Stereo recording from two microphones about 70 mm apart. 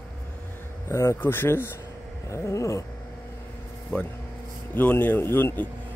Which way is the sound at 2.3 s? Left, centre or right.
Left.